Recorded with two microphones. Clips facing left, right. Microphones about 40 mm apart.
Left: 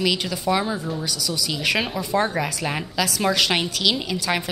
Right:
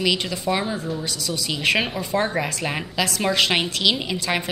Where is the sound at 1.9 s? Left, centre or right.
Centre.